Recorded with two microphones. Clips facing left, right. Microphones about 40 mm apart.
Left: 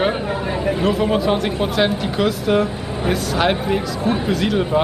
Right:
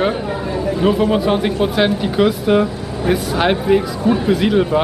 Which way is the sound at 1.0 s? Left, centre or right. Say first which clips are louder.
Right 2 dB; centre.